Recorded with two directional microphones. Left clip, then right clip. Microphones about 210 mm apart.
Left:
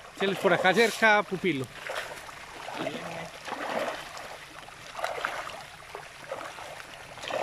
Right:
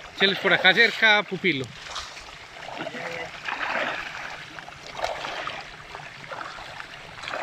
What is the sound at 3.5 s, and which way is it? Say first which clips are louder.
Splash: right 5 dB; 30° left (ahead or behind).